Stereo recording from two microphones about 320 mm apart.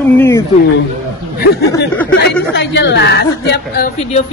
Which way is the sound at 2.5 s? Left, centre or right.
Left.